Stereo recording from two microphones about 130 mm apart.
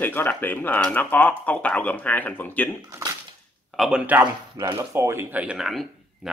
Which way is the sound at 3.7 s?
Centre (ahead or behind).